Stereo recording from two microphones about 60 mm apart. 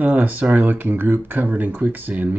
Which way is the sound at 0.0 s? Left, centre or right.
Right.